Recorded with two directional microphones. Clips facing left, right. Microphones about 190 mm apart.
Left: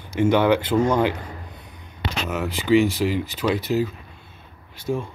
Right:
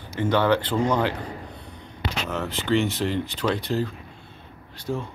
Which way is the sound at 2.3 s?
10° left (ahead or behind).